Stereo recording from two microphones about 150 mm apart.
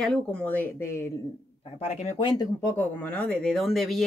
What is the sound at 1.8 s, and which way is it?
Speech, 50° left (ahead or behind).